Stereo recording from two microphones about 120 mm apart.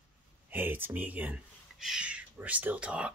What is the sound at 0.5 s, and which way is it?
Speech, 15° right (ahead or behind).